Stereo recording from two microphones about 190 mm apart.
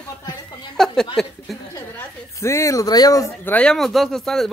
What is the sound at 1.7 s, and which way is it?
A woman's voice, 15° left (ahead or behind).